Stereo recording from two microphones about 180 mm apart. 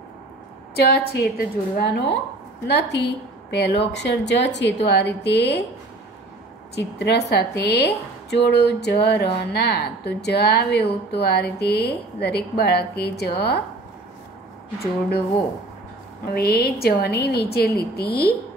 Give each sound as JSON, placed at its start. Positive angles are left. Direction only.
{"t": 0.7, "sound": "a woman's voice", "side_deg": 60}
{"t": 6.7, "sound": "a woman's voice", "side_deg": 70}
{"t": 16.3, "sound": "a woman's voice", "side_deg": 60}